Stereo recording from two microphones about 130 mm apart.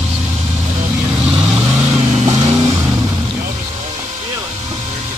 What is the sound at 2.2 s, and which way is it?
Vehicle, 30° right (ahead or behind).